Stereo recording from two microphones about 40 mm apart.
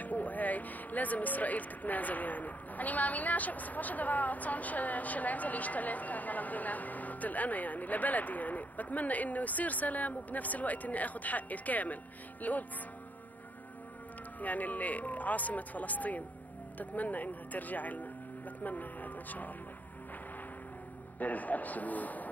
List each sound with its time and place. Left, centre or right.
0.0 s speech: left
14.4 s speech: left
21.2 s speech: left